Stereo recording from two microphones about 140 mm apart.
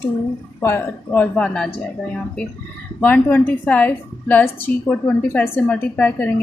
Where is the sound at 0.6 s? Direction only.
15° left (ahead or behind).